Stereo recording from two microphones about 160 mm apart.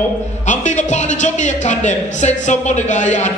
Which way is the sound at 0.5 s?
50° left (ahead or behind).